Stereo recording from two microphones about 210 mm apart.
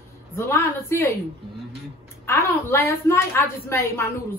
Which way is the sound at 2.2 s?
10° left (ahead or behind).